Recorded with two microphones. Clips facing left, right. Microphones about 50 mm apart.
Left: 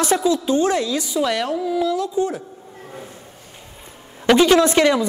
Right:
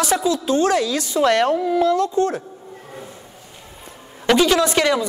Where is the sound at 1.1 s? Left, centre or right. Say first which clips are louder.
Right 4 dB; centre.